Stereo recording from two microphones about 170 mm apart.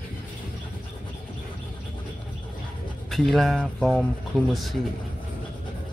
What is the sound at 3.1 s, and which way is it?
Speech, centre (ahead or behind).